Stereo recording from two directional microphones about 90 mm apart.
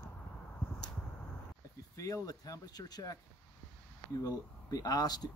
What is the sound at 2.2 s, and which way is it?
Speech, 45° left (ahead or behind).